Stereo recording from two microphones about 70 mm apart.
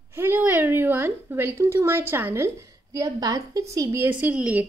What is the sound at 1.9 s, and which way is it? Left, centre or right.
A woman's voice, right.